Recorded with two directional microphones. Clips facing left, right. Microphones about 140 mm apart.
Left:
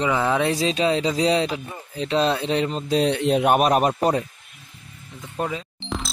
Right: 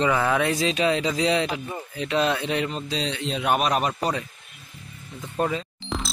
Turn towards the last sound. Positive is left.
turn(degrees=0)  # may be behind; listen again after turning